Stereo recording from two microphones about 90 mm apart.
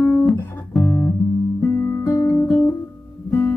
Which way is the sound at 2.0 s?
40° left (ahead or behind).